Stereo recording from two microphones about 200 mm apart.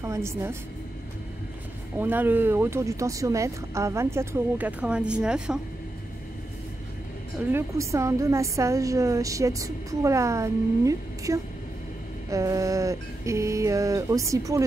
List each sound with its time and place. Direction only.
0.0 s a woman's voice: 15° right (ahead or behind)
2.0 s a woman's voice: 10° right (ahead or behind)
7.5 s a woman's voice: 15° right (ahead or behind)